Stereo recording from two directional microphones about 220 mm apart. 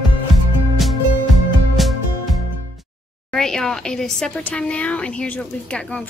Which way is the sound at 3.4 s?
Centre (ahead or behind).